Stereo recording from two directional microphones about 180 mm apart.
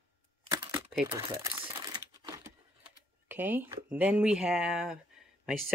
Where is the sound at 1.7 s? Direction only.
25° right (ahead or behind).